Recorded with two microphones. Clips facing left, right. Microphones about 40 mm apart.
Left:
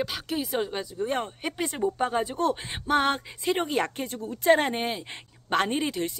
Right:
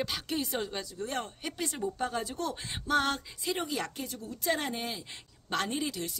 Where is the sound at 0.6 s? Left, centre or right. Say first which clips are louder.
Left 6 dB; left.